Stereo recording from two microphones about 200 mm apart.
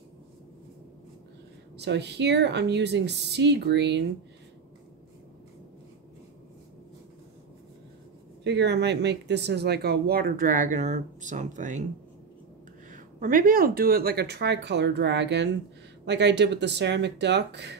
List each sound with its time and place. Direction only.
1.8 s speech: 60° right (ahead or behind)
8.5 s speech: 60° right (ahead or behind); by 11.8 s 40° right (ahead or behind)
12.9 s speech: 45° right (ahead or behind); by 17.7 s 60° right (ahead or behind)